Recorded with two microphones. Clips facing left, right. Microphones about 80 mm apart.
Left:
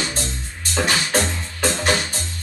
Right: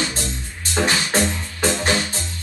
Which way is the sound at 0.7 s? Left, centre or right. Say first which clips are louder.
Even; right.